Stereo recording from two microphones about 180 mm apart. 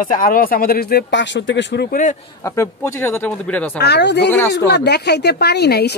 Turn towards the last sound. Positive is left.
turn(degrees=65)  # may be behind; listen again after turning